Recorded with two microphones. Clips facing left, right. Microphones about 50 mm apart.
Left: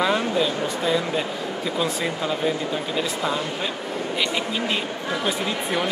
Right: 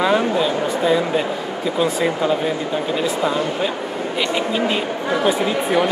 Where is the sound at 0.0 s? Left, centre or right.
Centre.